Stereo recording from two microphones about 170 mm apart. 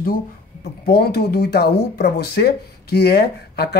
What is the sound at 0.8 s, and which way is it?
Speech, 70° left (ahead or behind).